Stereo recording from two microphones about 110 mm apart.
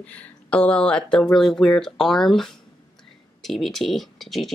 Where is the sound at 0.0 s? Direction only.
10° left (ahead or behind).